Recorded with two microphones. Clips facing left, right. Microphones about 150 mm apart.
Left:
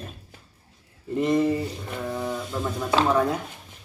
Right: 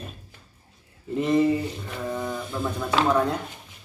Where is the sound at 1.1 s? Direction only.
Centre (ahead or behind).